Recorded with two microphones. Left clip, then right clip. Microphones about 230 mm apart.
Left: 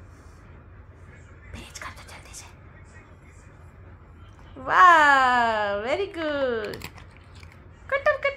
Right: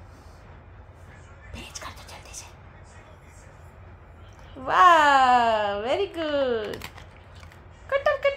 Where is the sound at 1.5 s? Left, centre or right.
Centre.